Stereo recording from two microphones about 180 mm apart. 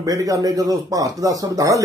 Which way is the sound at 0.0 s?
20° right (ahead or behind).